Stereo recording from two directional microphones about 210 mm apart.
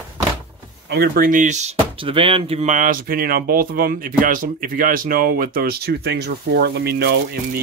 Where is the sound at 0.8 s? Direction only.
45° right (ahead or behind).